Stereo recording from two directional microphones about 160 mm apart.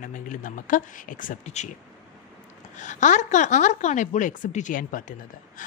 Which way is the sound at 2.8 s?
50° left (ahead or behind).